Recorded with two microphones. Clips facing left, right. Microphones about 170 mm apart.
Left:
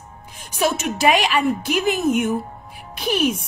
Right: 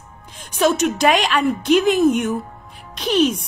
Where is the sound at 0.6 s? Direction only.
10° left (ahead or behind).